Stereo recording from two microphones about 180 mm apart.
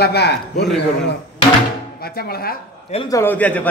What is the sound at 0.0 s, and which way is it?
Speech, 65° left (ahead or behind).